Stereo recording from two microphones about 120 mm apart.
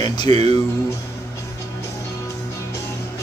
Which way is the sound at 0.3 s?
65° right (ahead or behind).